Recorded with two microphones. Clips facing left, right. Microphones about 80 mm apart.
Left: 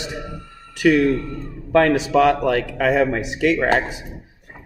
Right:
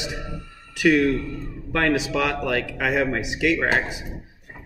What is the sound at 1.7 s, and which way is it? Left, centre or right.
A man's voice, left.